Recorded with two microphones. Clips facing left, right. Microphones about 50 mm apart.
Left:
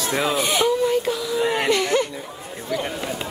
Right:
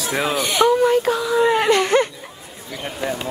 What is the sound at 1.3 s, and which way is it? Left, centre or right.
Whimper, right.